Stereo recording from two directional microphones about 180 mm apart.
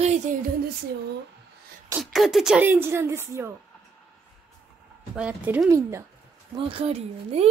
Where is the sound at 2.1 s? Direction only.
Centre (ahead or behind).